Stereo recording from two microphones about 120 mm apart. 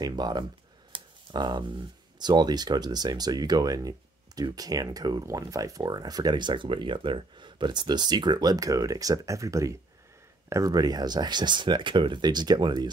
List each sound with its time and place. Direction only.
0.0 s speech: 35° right (ahead or behind)
0.9 s a sound: 40° right (ahead or behind)
2.1 s speech: 35° right (ahead or behind)